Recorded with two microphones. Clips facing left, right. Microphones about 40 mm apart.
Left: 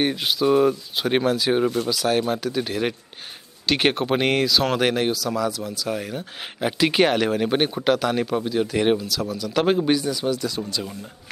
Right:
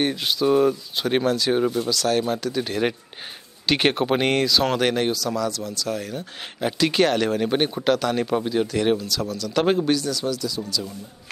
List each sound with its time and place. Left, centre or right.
0.0 s speech: centre
8.3 s speech: centre
8.7 s speech: centre
9.0 s speech: centre
9.8 s speech: centre
10.6 s speech: left